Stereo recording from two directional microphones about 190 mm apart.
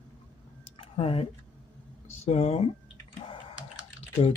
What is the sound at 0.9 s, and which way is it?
Speech, 30° left (ahead or behind).